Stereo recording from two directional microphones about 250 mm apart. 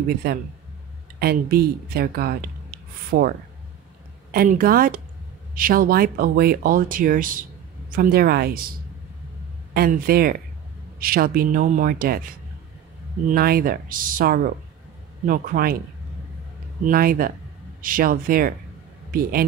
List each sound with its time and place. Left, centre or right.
0.2 s speech: right
9.8 s speech: right
13.3 s speech: right
16.8 s speech: right